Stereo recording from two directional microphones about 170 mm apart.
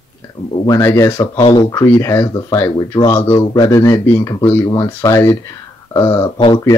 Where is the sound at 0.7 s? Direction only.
15° left (ahead or behind).